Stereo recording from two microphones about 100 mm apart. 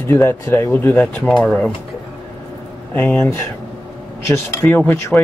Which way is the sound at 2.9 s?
15° left (ahead or behind).